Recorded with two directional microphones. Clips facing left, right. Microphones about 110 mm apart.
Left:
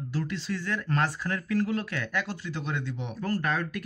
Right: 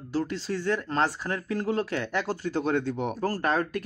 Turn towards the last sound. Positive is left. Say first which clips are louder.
# right 2 dB
turn(degrees=-35)  # may be behind; listen again after turning